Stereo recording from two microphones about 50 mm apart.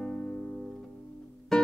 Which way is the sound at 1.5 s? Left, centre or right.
Centre.